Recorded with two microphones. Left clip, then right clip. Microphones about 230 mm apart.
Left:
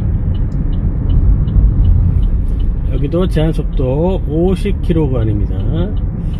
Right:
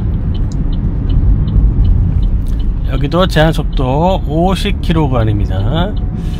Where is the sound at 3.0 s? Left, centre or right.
Right.